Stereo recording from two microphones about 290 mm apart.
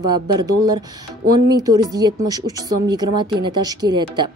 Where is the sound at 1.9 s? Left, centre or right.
Centre.